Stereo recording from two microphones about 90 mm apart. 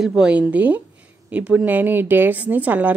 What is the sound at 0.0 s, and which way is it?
Speech, 10° right (ahead or behind).